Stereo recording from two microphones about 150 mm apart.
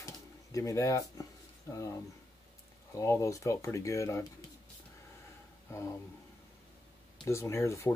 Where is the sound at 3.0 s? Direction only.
20° left (ahead or behind).